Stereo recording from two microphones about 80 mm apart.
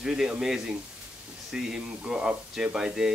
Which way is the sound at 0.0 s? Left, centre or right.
Centre.